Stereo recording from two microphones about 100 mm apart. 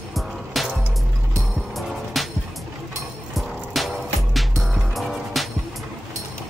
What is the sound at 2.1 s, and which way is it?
Music, centre (ahead or behind).